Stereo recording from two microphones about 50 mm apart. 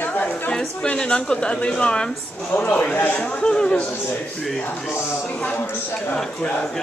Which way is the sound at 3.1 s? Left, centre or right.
Left.